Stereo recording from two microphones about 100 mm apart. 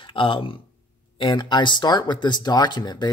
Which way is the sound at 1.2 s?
50° left (ahead or behind).